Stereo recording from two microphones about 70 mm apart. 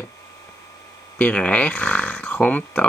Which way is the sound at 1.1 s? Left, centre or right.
Centre.